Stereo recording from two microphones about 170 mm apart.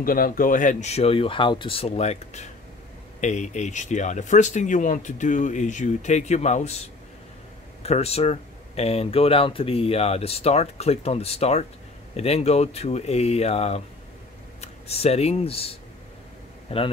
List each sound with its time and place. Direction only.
0.0 s speech: 55° left (ahead or behind); by 16.8 s 35° left (ahead or behind)